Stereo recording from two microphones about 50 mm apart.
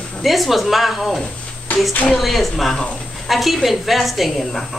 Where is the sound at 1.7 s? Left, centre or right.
Left.